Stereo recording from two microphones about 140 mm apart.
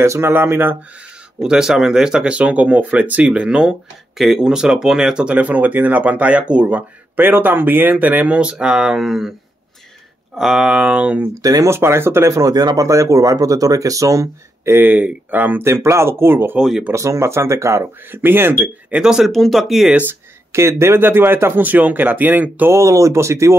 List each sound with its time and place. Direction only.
0.0 s speech: 20° right (ahead or behind)
1.4 s speech: 5° right (ahead or behind)
10.3 s speech: 5° right (ahead or behind)
11.3 s speech: 25° right (ahead or behind)
16.5 s speech: 5° right (ahead or behind)
16.9 s speech: 20° right (ahead or behind); by 20.0 s centre (ahead or behind)
20.8 s speech: 15° right (ahead or behind)